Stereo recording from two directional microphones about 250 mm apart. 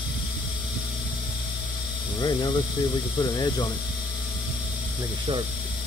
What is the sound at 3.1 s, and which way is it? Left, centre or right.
Speech, centre.